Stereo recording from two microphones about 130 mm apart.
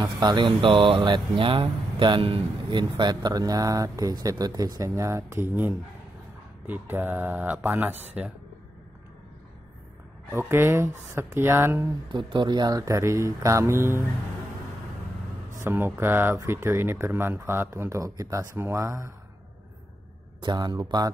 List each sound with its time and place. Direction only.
0.0 s speech: 30° right (ahead or behind); by 8.3 s 15° right (ahead or behind)
10.3 s speech: 20° right (ahead or behind)
12.1 s speech: 40° right (ahead or behind); by 14.0 s 20° right (ahead or behind)
15.6 s speech: 20° right (ahead or behind)
20.4 s speech: 30° right (ahead or behind)